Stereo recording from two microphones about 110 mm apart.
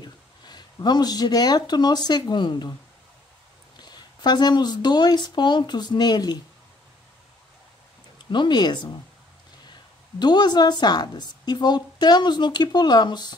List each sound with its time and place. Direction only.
0.0 s speech: 40° left (ahead or behind)
3.9 s a woman's voice: 40° left (ahead or behind)
8.2 s speech: 45° left (ahead or behind)
10.1 s a woman's voice: 40° left (ahead or behind)